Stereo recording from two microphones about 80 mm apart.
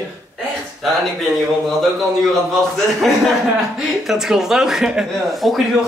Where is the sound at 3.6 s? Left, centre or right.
Centre.